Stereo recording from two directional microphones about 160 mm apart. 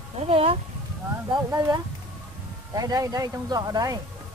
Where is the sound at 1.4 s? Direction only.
15° right (ahead or behind).